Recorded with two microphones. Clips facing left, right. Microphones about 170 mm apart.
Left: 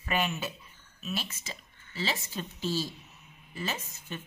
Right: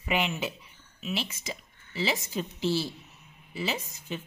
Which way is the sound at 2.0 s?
15° right (ahead or behind).